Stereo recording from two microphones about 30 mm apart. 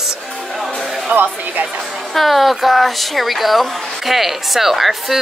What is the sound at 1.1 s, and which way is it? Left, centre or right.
Speech, right.